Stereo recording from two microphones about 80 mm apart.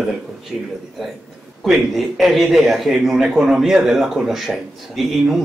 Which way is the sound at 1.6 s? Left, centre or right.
Centre.